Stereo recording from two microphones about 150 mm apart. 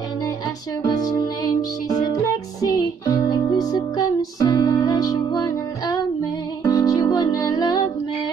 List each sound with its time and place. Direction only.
0.8 s music: 25° left (ahead or behind)